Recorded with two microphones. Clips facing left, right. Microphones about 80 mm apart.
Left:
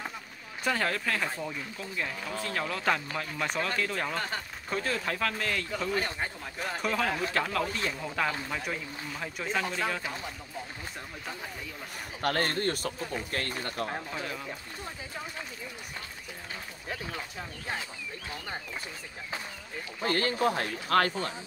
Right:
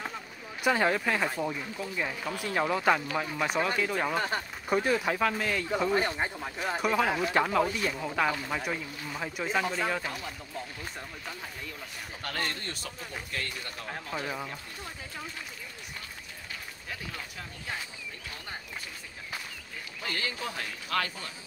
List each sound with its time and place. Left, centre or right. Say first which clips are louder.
0.7 s speech: right 4 dB; centre
5.8 s speech: right 6 dB; right; by 10.0 s centre
12.2 s speech: left 7 dB; left
14.1 s speech: right 2 dB; centre
17.1 s speech: left 3 dB; left
20.0 s speech: left 8 dB; left